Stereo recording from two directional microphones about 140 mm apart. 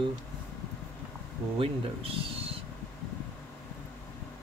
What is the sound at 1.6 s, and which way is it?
Speech, 40° right (ahead or behind).